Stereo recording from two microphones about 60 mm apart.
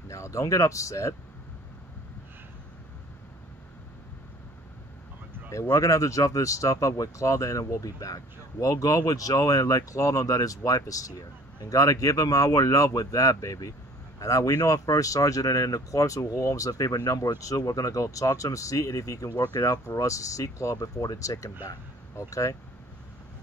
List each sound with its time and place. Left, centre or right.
0.1 s speech: left
5.5 s speech: left
22.1 s speech: left